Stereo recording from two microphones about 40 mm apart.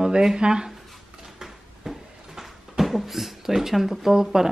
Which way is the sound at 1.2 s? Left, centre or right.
Centre.